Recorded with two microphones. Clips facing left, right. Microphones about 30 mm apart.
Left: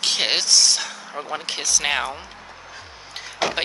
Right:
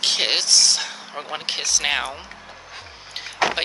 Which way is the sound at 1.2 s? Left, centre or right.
Centre.